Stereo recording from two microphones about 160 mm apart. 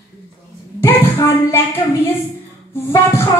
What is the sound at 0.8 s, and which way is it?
Speech, 15° left (ahead or behind).